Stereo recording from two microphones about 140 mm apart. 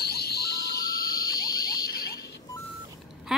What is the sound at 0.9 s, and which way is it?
Car alarm, 90° left.